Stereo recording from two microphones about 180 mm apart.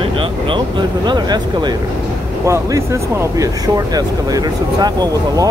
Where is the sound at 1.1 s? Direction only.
25° right (ahead or behind).